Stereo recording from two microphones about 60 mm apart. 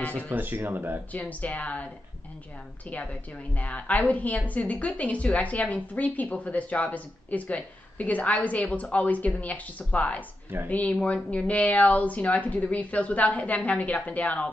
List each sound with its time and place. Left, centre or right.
0.3 s speech: right
1.4 s a woman's voice: left
2.9 s a woman's voice: left